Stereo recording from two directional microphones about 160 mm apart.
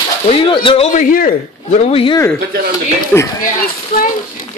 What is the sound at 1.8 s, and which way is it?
Speech, 35° left (ahead or behind).